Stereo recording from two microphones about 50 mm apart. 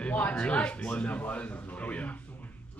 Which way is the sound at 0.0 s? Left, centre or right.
Left.